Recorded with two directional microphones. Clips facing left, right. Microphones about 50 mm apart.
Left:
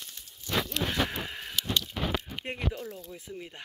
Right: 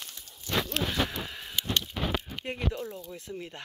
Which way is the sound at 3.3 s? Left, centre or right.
Centre.